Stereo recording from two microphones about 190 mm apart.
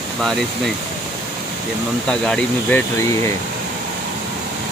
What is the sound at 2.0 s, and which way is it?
Speech, 5° left (ahead or behind).